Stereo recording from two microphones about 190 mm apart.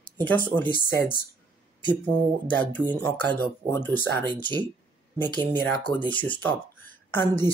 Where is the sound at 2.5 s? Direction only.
10° left (ahead or behind).